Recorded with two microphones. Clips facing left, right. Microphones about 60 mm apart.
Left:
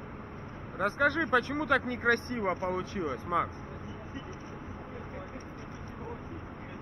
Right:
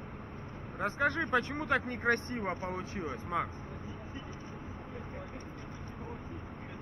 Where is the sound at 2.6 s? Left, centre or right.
Left.